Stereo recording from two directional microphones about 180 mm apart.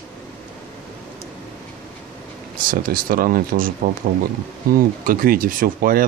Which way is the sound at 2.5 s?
50° right (ahead or behind).